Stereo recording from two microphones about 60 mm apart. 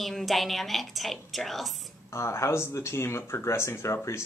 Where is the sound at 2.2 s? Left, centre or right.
Left.